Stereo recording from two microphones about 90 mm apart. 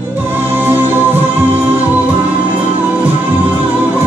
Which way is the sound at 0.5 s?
25° right (ahead or behind).